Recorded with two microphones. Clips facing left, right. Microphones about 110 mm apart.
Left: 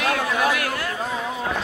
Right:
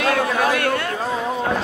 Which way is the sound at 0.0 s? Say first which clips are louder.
Right 3 dB; 35° right (ahead or behind).